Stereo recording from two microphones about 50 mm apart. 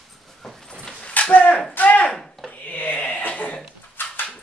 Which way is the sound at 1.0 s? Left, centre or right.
Left.